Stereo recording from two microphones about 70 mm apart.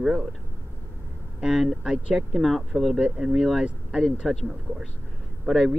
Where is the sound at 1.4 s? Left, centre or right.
Centre.